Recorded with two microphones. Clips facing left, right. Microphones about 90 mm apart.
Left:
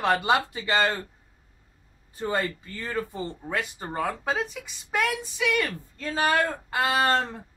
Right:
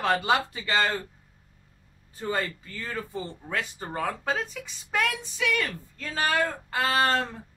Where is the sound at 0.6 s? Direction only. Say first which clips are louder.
Left 2 dB; 15° left (ahead or behind).